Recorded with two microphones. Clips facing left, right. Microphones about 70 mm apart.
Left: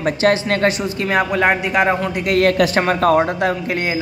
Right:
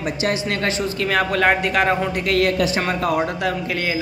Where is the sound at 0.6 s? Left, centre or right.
Centre.